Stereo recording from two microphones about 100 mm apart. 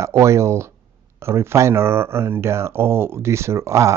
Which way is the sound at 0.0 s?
30° right (ahead or behind).